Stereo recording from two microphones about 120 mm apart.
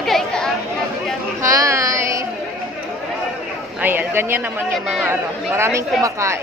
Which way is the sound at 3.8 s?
15° right (ahead or behind).